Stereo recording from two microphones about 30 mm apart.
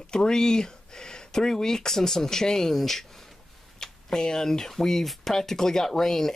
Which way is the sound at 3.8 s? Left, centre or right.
Left.